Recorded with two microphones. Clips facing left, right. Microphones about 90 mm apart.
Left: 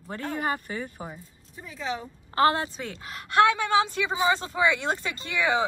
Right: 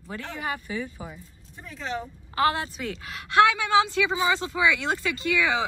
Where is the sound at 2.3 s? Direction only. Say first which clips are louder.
Left 2 dB; 35° left (ahead or behind).